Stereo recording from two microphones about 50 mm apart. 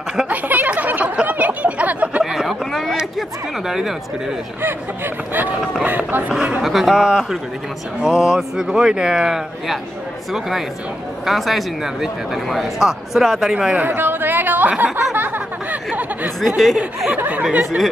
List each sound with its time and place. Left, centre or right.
0.3 s a sound: right
2.7 s a sound: centre
3.2 s speech: centre
4.6 s speech: right
5.6 s speech: centre
5.9 s speech: right
6.6 s speech: centre
11.2 s speech: centre
13.7 s chatter: right
15.1 s a sound: right
15.9 s speech: right
16.3 s speech: centre